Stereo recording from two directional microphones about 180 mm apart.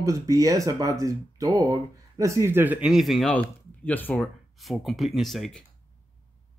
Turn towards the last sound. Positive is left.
turn(degrees=0)  # may be behind; listen again after turning